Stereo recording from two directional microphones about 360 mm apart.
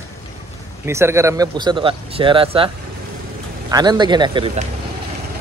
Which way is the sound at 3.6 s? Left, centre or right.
Centre.